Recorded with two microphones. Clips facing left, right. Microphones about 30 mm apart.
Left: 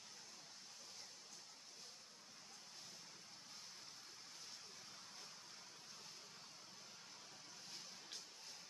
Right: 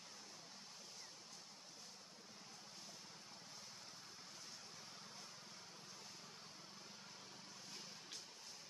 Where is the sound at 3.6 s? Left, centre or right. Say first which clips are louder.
Right 1 dB; centre.